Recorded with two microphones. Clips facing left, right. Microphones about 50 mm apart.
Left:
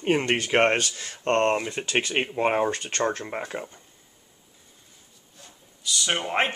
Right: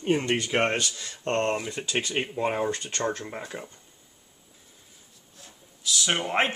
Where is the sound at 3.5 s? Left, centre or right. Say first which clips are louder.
Left 4 dB; left.